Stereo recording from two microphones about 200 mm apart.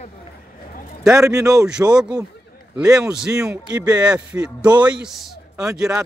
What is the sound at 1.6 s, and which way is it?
Speech, 5° right (ahead or behind).